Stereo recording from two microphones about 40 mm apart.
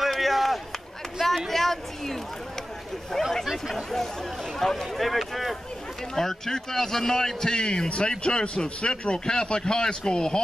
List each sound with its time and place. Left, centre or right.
0.1 s run: centre
1.5 s speech: centre
6.1 s a man's voice: centre